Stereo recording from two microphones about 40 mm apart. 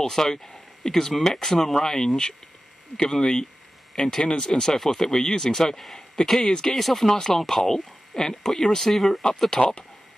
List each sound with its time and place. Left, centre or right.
0.0 s speech: centre
6.7 s speech: centre
9.5 s speech: centre